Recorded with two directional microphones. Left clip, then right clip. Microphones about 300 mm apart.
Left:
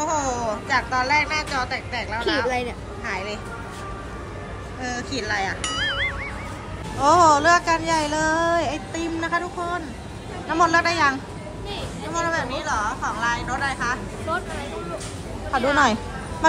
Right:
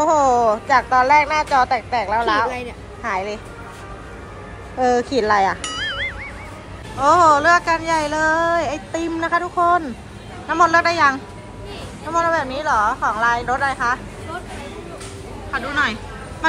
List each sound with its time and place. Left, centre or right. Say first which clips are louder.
0.0 s speech: right 9 dB; centre
4.8 s speech: right 11 dB; centre
15.5 s speech: left 2 dB; centre